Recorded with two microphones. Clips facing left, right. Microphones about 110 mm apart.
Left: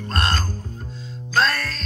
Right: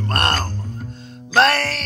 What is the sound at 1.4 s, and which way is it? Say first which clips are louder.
Music: right 5 dB; 75° right (ahead or behind).